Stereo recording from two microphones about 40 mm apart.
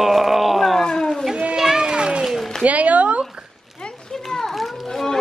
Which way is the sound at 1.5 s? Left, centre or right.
Centre.